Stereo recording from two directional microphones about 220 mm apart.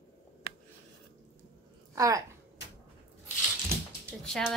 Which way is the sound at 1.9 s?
15° right (ahead or behind).